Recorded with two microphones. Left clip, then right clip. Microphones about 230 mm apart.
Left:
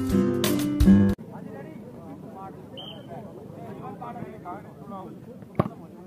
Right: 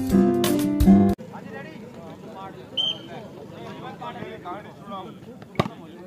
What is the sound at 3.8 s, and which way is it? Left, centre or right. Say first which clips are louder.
Vehicle: right 3 dB; right.